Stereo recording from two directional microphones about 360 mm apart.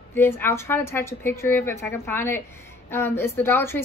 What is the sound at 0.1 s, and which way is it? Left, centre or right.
A woman's voice, centre.